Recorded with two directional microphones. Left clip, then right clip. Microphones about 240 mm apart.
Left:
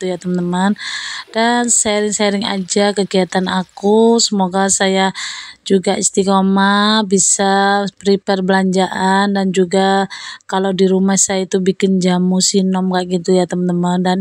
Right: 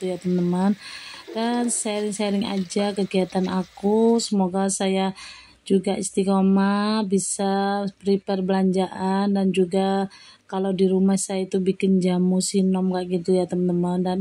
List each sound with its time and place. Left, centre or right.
0.0 s speech: left